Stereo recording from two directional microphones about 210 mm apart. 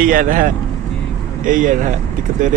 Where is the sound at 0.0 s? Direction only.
40° right (ahead or behind).